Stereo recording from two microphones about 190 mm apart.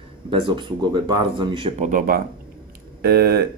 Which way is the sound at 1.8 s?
45° right (ahead or behind).